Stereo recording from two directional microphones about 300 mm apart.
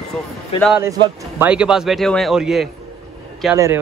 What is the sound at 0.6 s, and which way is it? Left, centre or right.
A man's voice, centre.